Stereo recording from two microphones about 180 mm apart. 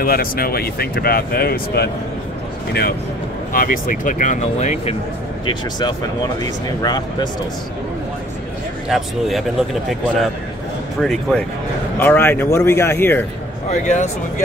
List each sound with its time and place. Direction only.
0.0 s speech: 55° left (ahead or behind)
3.5 s speech: 50° left (ahead or behind)
5.5 s speech: 25° left (ahead or behind)
8.8 s speech: centre (ahead or behind)
11.0 s speech: 5° left (ahead or behind)
13.7 s speech: 40° left (ahead or behind)